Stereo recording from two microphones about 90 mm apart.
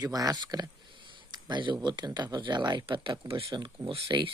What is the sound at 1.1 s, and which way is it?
Speech, 55° right (ahead or behind).